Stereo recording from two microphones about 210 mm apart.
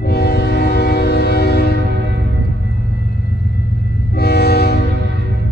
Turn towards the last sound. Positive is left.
turn(degrees=50)  # may be behind; listen again after turning